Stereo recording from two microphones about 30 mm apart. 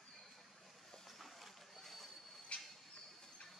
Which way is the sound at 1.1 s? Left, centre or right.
Centre.